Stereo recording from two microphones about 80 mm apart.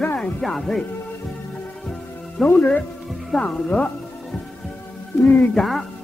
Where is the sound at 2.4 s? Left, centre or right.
Centre.